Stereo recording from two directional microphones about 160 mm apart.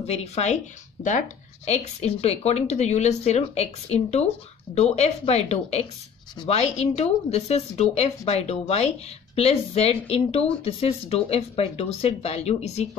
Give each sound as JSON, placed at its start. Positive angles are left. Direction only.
{"t": 0.0, "sound": "a woman's voice", "side_deg": 40}
{"t": 1.0, "sound": "speech", "side_deg": 30}
{"t": 1.7, "sound": "a woman's voice", "side_deg": 40}